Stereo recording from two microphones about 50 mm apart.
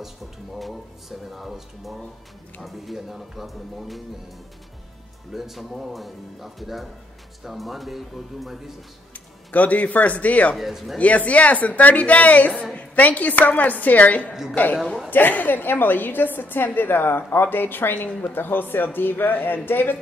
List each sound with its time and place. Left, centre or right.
1.3 s speech: centre
5.3 s speech: centre
9.1 s speech: left
10.5 s speech: centre
11.0 s a woman's voice: left